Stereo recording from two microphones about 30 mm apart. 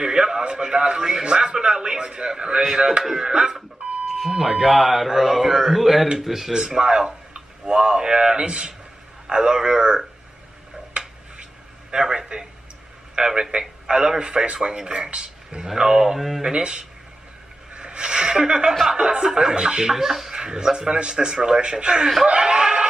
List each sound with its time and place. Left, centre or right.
0.0 s speech: right
3.0 s speech: centre
3.3 s speech: right
4.3 s a man's voice: centre
6.5 s speech: right
10.9 s a sound: right
11.9 s speech: right
14.4 s speech: right
14.7 s speech: right
15.1 s a sound: right
15.6 s speech: centre
16.4 s speech: right
22.3 s snicker: right